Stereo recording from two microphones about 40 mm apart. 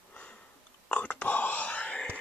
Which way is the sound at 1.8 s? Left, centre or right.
Left.